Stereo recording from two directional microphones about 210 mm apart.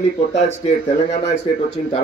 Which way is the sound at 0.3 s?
30° left (ahead or behind).